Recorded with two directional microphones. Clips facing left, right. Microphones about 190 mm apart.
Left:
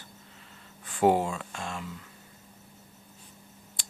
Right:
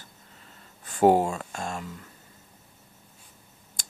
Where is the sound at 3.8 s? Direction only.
45° right (ahead or behind).